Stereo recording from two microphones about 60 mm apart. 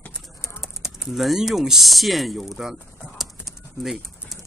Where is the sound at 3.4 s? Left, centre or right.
Centre.